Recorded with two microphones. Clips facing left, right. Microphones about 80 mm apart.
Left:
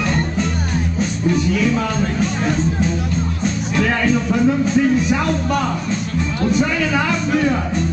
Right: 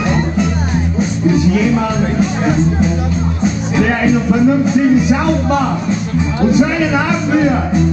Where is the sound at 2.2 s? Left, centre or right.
Centre.